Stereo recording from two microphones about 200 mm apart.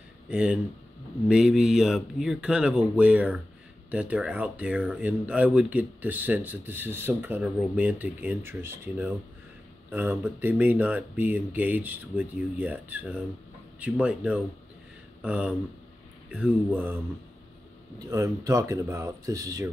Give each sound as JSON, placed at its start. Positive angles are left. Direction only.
{"t": 0.3, "sound": "speech", "side_deg": -5}